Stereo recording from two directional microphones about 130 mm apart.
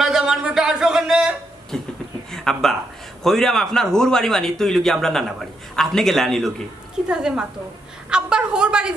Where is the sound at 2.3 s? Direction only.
5° left (ahead or behind).